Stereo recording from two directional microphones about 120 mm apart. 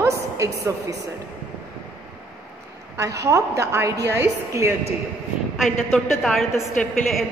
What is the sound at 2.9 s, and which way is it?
A woman's voice, 25° right (ahead or behind).